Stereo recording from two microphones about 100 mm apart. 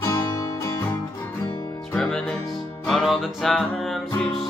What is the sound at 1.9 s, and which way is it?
Music, 5° left (ahead or behind).